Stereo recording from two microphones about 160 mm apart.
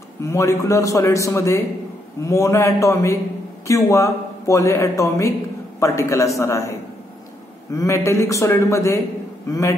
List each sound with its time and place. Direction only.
0.2 s a man's voice: 20° left (ahead or behind)
7.7 s a man's voice: 20° left (ahead or behind)